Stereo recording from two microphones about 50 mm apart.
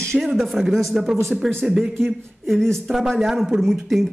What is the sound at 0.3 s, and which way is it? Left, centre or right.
Speech, centre.